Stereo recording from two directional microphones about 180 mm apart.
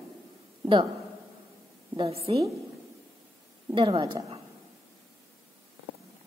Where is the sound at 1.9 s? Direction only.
30° right (ahead or behind).